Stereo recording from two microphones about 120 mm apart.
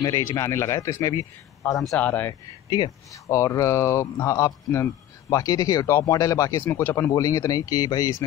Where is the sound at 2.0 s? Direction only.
15° left (ahead or behind).